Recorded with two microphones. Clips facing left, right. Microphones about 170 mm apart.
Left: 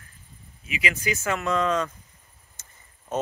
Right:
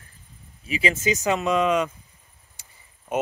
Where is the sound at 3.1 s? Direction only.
10° right (ahead or behind).